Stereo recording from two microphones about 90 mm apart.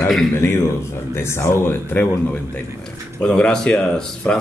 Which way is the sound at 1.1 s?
30° left (ahead or behind).